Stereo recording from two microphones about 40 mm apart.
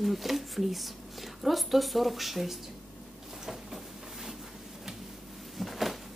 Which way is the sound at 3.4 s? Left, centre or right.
Centre.